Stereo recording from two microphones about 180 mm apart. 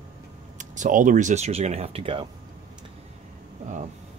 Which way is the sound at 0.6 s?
45° right (ahead or behind).